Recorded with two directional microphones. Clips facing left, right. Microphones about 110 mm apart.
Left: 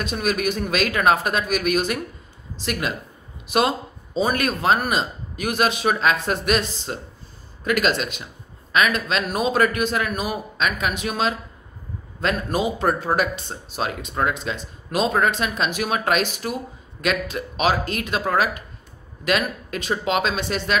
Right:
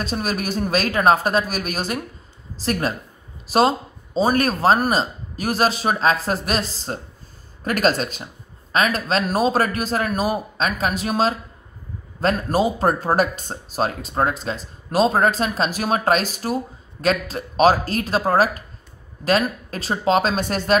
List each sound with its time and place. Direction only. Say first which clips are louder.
0.0 s speech: left 1 dB; 35° right (ahead or behind)